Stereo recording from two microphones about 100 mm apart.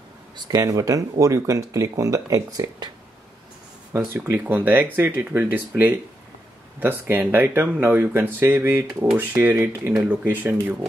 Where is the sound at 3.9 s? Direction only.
25° right (ahead or behind).